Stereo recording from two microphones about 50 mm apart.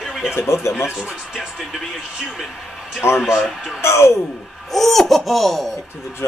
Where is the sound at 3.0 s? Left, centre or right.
Left.